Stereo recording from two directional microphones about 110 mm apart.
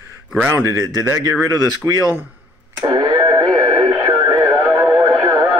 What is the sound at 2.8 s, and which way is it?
Radio, 35° right (ahead or behind).